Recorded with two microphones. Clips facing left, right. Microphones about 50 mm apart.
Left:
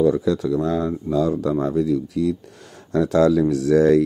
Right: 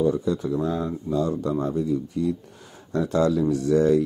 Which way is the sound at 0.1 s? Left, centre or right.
Left.